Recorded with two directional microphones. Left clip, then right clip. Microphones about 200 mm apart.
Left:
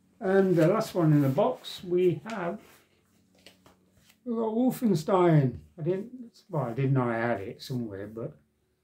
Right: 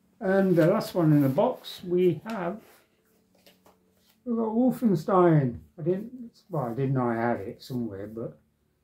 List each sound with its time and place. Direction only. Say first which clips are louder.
0.2 s speech: right 1 dB; 5° right (ahead or behind)
4.2 s speech: right 2 dB; 20° left (ahead or behind)